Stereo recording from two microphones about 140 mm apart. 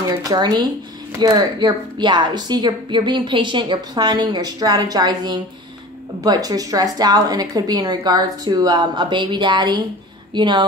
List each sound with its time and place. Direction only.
0.3 s a woman's voice: 30° right (ahead or behind)